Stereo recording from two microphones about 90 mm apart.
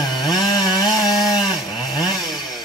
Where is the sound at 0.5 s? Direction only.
50° left (ahead or behind).